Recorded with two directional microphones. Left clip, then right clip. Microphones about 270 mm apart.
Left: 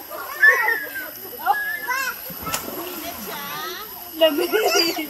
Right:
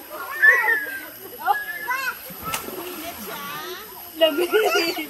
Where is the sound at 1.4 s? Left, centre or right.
Centre.